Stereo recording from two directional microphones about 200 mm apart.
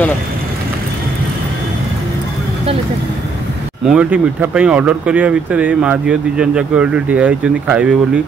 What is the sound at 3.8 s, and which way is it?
Speech, 5° right (ahead or behind).